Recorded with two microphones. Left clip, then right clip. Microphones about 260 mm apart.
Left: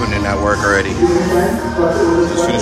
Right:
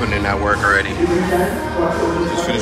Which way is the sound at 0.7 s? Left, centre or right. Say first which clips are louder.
Left 1 dB; left.